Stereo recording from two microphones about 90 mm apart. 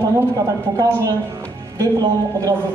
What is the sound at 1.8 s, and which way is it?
Speech, 45° right (ahead or behind).